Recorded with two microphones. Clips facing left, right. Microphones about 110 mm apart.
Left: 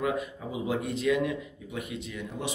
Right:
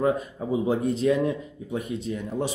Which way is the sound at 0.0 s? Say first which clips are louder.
Right 6 dB; 35° right (ahead or behind).